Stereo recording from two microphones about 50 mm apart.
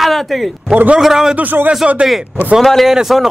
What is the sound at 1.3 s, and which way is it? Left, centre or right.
Speech, right.